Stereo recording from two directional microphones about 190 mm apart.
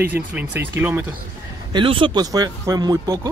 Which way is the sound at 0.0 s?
10° right (ahead or behind).